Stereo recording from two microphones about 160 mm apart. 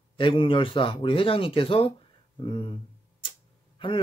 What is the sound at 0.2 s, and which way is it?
Speech, 35° left (ahead or behind).